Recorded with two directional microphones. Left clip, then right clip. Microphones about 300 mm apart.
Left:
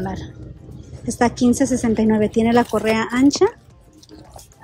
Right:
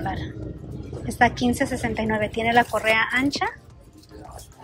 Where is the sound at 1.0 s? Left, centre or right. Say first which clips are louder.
Left 2 dB; centre.